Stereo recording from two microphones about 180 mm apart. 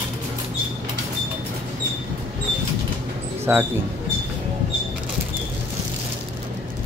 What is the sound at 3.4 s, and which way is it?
Speech, 10° right (ahead or behind).